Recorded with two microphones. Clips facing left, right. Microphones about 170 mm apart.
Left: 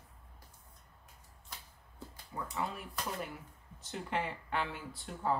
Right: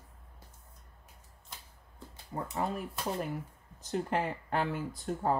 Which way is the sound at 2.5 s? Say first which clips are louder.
Right 5 dB; 45° right (ahead or behind).